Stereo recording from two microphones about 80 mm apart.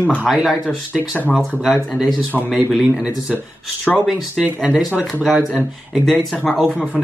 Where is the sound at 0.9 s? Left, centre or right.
Left.